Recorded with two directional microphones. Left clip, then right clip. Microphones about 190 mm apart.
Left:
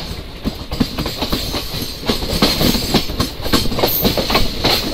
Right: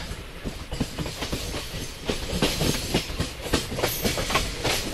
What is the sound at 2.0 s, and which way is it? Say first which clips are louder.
Train: left 10 dB; 25° left (ahead or behind).